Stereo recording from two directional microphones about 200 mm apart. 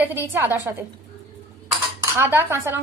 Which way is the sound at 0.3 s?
10° right (ahead or behind).